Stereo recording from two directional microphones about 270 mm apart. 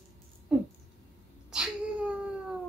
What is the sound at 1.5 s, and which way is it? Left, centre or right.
Cat, centre.